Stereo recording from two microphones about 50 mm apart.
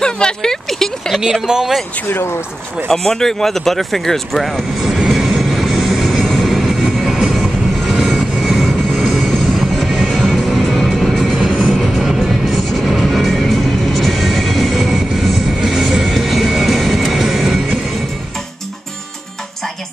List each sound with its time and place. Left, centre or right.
0.0 s a sound: centre
1.2 s speech: centre
2.0 s speech: left
2.9 s vehicle: centre
7.0 s vehicle: centre
9.3 s music: centre
9.8 s music: centre
11.3 s music: right
11.7 s music: centre